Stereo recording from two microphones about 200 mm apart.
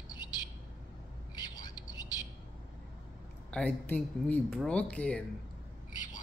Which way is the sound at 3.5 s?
5° left (ahead or behind).